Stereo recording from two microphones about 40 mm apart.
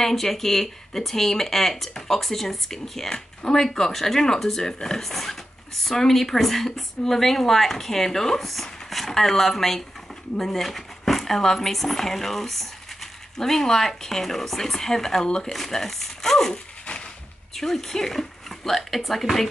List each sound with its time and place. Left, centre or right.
0.0 s speech: centre
15.5 s speech: centre
17.6 s speech: centre